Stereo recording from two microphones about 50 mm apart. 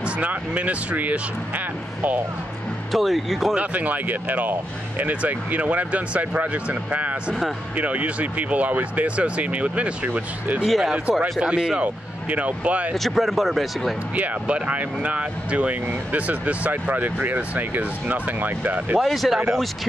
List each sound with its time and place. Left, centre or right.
0.0 s speech: right
2.9 s speech: centre
3.5 s speech: right
10.6 s speech: centre
11.4 s speech: centre
11.8 s speech: right
12.9 s speech: centre
14.1 s speech: right
19.0 s speech: centre